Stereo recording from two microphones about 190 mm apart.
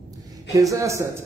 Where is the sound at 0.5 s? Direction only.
15° right (ahead or behind).